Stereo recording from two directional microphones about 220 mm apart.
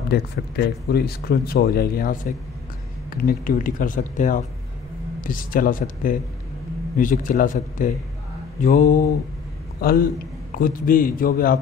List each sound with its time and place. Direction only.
0.1 s a man's voice: 45° left (ahead or behind)